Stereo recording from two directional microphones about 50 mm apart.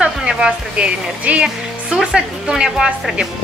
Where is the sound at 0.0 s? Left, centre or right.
Centre.